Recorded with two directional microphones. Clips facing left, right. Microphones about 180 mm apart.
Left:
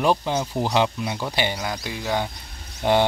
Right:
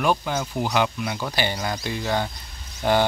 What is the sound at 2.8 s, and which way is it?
Speech, 20° left (ahead or behind).